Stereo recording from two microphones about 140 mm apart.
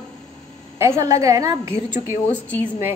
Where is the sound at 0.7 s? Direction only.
20° right (ahead or behind).